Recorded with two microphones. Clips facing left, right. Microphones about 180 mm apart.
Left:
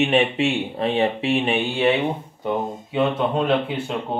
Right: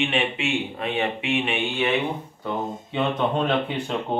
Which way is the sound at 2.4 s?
10° left (ahead or behind).